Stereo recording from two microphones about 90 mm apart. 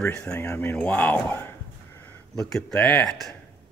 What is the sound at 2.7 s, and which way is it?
Speech, 20° left (ahead or behind).